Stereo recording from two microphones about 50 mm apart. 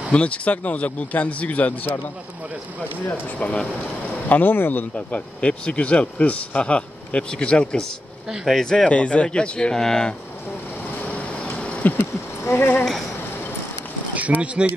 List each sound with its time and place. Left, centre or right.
0.1 s speech: left
3.3 s speech: left
4.3 s speech: left
4.9 s speech: left
8.5 s speech: centre
8.8 s speech: left; by 10.1 s centre
11.0 s vehicle: left
11.3 s insect: left
12.5 s speech: left
14.1 s speech: right